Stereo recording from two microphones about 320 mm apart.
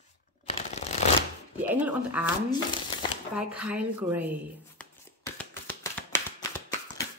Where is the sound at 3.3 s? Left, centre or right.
Centre.